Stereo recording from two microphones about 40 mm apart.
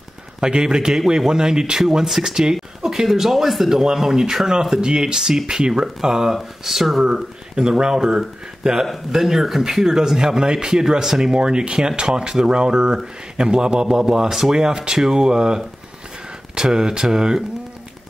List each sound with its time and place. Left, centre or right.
0.4 s speech: right; by 7.1 s centre
7.5 s speech: centre
9.1 s speech: centre